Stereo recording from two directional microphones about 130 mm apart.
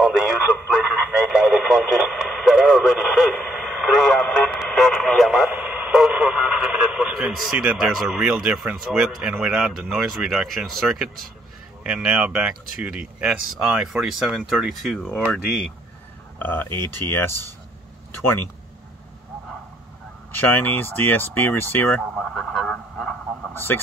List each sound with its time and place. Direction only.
0.0 s speech: 5° right (ahead or behind)
1.1 s radio: 5° right (ahead or behind)
11.8 s speech: 10° right (ahead or behind)
16.3 s speech: 15° left (ahead or behind)
17.3 s speech: 25° right (ahead or behind)
18.2 s speech: 15° left (ahead or behind)
20.3 s speech: 15° left (ahead or behind)
22.1 s vehicle: 5° left (ahead or behind)